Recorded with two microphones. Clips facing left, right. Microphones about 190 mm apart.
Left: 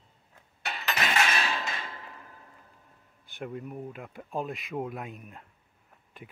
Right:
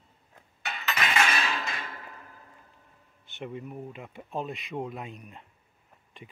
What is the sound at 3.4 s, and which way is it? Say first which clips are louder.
Speech: left 1 dB; centre (ahead or behind).